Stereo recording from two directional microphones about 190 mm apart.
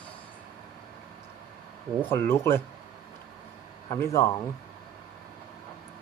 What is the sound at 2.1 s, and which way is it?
Speech, 15° left (ahead or behind).